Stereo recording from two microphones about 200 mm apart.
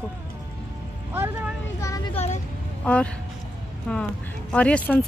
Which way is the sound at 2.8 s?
5° left (ahead or behind).